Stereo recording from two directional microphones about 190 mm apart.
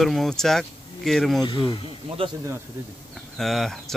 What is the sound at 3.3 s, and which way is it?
Speech, centre (ahead or behind).